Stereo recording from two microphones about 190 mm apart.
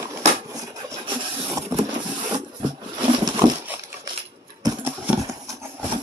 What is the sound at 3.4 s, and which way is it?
Dog, 20° right (ahead or behind).